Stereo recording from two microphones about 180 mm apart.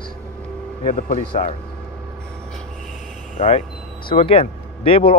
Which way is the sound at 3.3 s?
40° left (ahead or behind).